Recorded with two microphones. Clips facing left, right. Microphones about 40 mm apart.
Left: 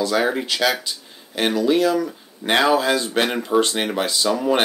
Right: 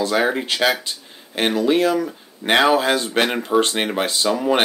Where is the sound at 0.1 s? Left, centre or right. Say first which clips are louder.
Right 1 dB; centre.